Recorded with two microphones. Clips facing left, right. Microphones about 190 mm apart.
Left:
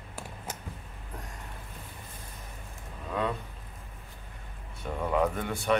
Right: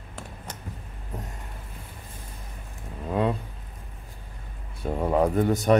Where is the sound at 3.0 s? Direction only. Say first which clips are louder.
Right 6 dB; 30° right (ahead or behind).